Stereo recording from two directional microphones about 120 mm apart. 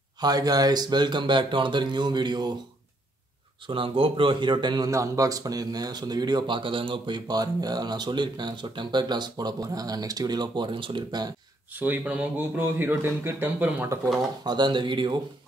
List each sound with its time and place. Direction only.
0.2 s a man's voice: 35° right (ahead or behind)
3.6 s a man's voice: 45° right (ahead or behind)
11.8 s speech: 10° right (ahead or behind)
14.4 s a man's voice: 35° right (ahead or behind)